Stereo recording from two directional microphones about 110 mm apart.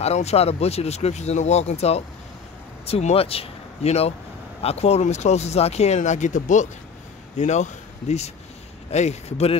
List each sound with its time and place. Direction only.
0.0 s a man's voice: 75° left (ahead or behind)